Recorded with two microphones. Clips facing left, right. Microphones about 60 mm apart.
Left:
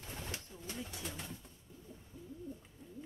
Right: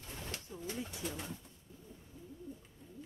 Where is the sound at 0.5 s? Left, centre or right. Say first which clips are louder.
Right 6 dB; centre.